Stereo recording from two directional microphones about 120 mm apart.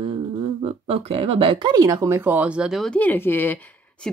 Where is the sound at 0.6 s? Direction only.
50° right (ahead or behind); by 2.1 s 30° right (ahead or behind).